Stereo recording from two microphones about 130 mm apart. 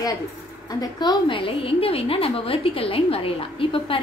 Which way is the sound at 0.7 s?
30° left (ahead or behind).